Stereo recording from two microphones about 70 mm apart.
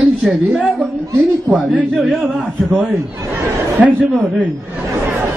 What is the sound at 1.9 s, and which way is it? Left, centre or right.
Speech, centre.